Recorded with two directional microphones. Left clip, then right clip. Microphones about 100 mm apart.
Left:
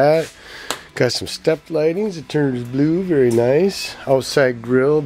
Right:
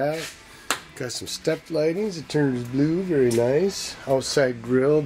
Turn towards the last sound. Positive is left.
turn(degrees=20)  # may be behind; listen again after turning